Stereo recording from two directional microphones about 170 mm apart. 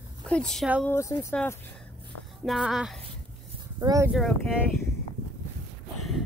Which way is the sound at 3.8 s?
20° right (ahead or behind).